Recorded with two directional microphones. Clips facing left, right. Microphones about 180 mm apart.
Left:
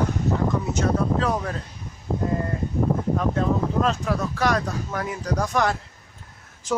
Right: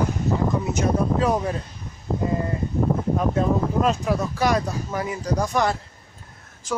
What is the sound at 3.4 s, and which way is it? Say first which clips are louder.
Speech: right 2 dB; 10° right (ahead or behind).